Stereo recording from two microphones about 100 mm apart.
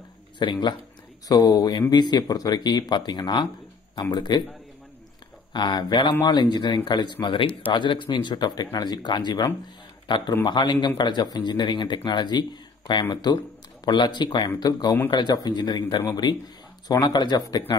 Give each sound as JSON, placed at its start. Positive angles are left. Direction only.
{"t": 0.4, "sound": "speech", "side_deg": 50}
{"t": 1.3, "sound": "speech", "side_deg": 40}
{"t": 5.5, "sound": "a man's voice", "side_deg": 50}